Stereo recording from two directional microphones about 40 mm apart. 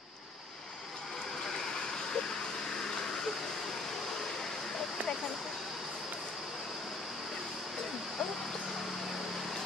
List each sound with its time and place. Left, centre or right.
1.5 s vehicle: centre